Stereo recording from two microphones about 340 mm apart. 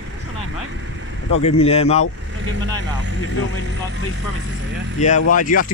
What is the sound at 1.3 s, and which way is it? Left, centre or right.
Speech, centre.